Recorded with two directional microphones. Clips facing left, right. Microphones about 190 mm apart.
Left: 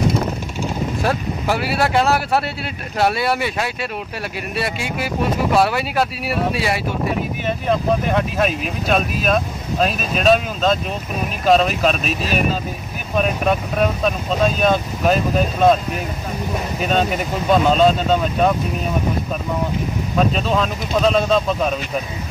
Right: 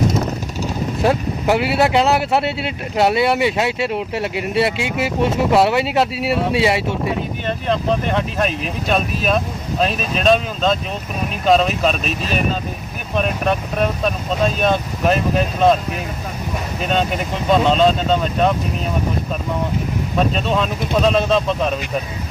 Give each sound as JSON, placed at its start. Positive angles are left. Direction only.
{"t": 1.0, "sound": "speech", "side_deg": -20}
{"t": 7.4, "sound": "speech", "side_deg": 5}
{"t": 17.5, "sound": "speech", "side_deg": 5}
{"t": 20.2, "sound": "speech", "side_deg": 0}